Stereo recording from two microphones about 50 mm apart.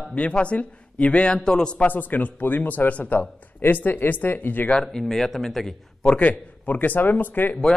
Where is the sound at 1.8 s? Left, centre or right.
Left.